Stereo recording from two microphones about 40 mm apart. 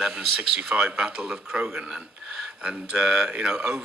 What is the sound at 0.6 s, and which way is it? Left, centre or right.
Speech, right.